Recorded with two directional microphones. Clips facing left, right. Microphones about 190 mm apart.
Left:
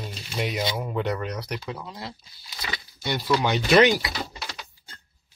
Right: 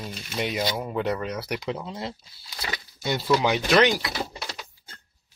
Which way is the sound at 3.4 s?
10° right (ahead or behind).